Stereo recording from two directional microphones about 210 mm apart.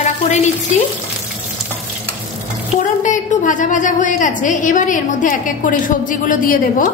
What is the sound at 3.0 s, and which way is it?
A woman's voice, 35° left (ahead or behind).